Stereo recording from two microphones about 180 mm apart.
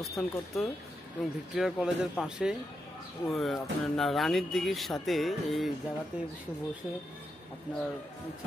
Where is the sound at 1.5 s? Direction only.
Centre (ahead or behind).